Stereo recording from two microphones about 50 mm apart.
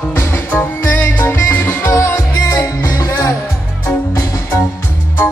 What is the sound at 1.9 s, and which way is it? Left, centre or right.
Music, left.